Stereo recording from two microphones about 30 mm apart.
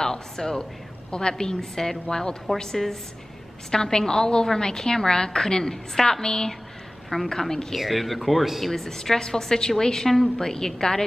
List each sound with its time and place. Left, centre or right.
0.0 s a woman's voice: centre
7.7 s speech: centre
8.7 s a woman's voice: centre